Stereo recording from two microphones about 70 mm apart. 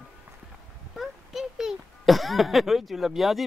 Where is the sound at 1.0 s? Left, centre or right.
Centre.